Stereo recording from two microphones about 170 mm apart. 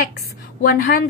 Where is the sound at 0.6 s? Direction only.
60° left (ahead or behind).